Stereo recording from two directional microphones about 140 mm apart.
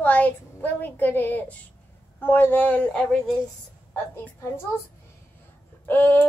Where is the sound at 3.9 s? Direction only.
20° left (ahead or behind).